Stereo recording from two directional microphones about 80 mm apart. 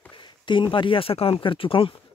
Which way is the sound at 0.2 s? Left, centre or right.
Left.